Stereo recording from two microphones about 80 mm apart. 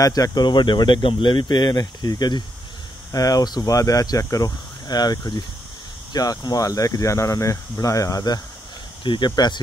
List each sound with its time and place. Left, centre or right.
0.0 s speech: left
3.1 s speech: left
9.0 s speech: left
9.3 s speech: left